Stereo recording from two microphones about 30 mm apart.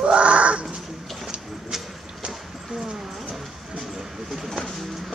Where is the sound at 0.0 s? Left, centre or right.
Right.